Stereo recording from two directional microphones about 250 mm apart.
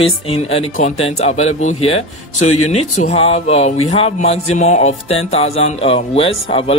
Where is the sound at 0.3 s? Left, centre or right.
Left.